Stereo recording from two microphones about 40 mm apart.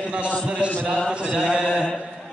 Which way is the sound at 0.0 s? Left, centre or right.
Right.